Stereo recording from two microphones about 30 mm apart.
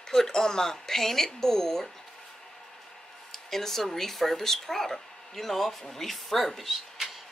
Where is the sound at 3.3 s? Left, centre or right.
Centre.